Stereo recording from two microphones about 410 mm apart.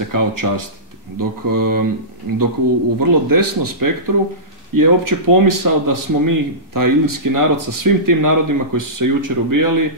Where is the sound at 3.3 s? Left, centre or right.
Right.